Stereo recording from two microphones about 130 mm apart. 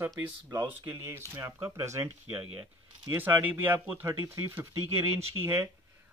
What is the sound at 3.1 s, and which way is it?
Speech, 15° right (ahead or behind).